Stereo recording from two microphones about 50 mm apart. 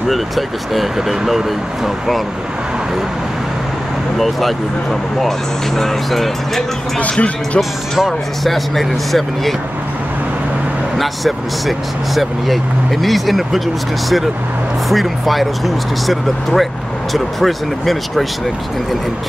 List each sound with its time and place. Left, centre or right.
0.1 s speech: centre
4.2 s speech: centre
5.8 s speech: centre
7.0 s speech: left
8.5 s speech: centre
11.0 s speech: centre
14.9 s speech: centre